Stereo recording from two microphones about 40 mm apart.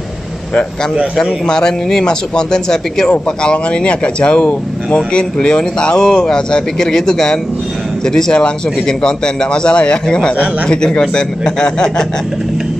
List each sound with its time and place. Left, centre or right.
1.1 s a man's voice: centre